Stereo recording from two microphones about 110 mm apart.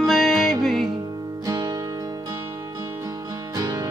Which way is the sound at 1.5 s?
35° right (ahead or behind).